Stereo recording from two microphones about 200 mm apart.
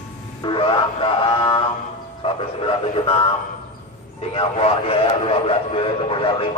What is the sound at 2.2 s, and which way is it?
A man's voice, 25° left (ahead or behind).